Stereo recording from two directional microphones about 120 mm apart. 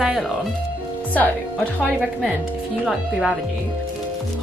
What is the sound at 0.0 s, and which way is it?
Speech, 5° right (ahead or behind).